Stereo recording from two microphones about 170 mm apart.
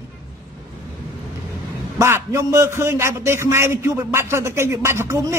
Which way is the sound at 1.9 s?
15° right (ahead or behind).